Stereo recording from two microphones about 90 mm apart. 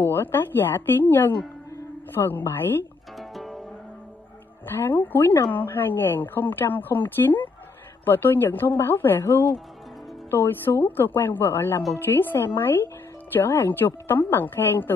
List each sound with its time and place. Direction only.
0.0 s speech: 25° left (ahead or behind)
3.2 s music: centre (ahead or behind)
4.6 s speech: 25° left (ahead or behind)